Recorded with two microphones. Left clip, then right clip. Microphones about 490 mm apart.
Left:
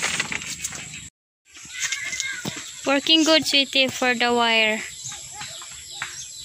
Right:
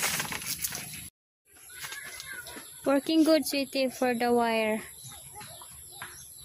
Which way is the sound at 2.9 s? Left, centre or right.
Right.